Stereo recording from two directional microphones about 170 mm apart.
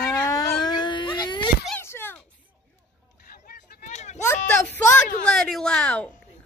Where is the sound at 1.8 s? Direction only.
15° left (ahead or behind).